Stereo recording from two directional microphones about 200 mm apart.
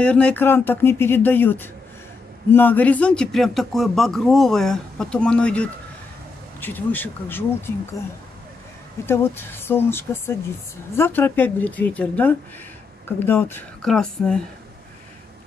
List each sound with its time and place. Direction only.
0.0 s speech: 5° left (ahead or behind)
9.0 s speech: 10° left (ahead or behind)